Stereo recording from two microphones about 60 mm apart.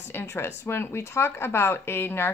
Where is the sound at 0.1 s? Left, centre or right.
Left.